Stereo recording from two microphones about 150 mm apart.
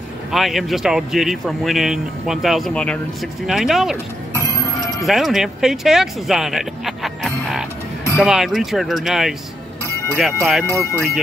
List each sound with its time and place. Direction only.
0.3 s speech: centre (ahead or behind)
5.0 s speech: centre (ahead or behind)
10.7 s speech: 15° left (ahead or behind)